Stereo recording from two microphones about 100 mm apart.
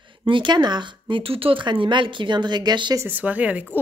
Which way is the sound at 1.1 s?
70° right (ahead or behind).